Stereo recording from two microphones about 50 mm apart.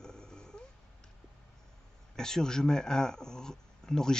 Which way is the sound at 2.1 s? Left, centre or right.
Centre.